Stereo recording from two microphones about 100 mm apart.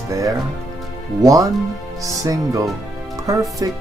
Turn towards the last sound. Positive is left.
turn(degrees=-35)  # may be behind; listen again after turning